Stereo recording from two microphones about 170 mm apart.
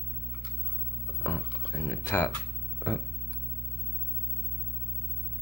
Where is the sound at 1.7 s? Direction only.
15° left (ahead or behind).